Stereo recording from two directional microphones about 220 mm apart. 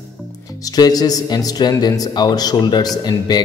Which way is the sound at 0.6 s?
15° left (ahead or behind).